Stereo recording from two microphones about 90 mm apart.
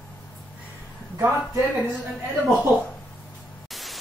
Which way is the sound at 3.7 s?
Centre (ahead or behind).